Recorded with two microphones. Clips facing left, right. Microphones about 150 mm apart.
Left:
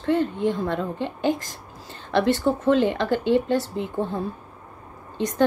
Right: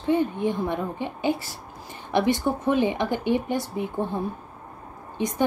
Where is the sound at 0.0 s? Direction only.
15° right (ahead or behind).